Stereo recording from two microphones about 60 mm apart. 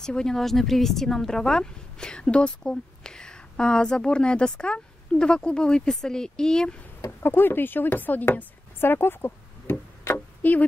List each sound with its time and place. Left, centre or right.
0.0 s speech: centre
7.2 s speech: left